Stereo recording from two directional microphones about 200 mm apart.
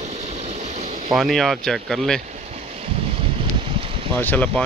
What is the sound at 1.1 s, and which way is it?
Speech, centre (ahead or behind).